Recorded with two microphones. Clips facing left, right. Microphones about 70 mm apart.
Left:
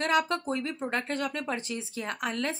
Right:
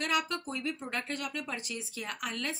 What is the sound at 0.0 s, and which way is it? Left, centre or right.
Speech, left.